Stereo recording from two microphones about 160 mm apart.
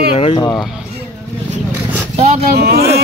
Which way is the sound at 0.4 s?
25° left (ahead or behind).